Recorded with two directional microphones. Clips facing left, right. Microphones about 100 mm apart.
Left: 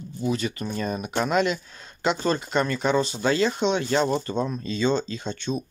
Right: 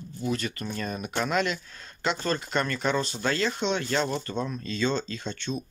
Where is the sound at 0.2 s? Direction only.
10° left (ahead or behind).